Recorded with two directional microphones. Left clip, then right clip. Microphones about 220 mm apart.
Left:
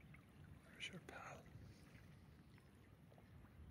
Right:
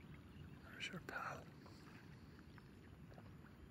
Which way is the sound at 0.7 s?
Centre (ahead or behind).